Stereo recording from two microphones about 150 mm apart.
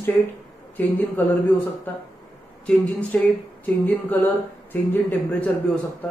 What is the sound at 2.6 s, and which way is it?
Speech, 10° left (ahead or behind).